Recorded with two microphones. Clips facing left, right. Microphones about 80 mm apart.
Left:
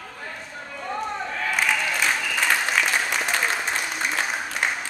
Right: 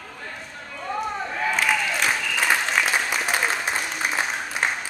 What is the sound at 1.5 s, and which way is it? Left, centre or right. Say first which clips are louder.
Applause: left 1 dB; centre.